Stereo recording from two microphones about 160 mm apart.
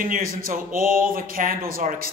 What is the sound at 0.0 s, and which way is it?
A man's voice, 60° right (ahead or behind).